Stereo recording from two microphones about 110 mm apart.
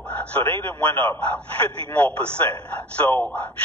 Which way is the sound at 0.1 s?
15° left (ahead or behind).